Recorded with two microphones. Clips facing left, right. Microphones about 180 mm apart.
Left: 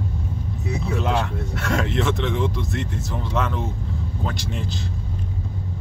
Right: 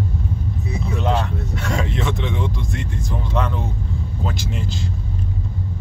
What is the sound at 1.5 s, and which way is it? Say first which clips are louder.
Speech: left 2 dB; centre (ahead or behind).